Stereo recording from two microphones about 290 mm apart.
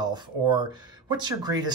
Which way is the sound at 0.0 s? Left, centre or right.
Centre.